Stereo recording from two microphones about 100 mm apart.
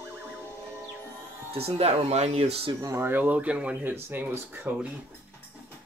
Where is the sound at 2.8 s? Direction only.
25° right (ahead or behind).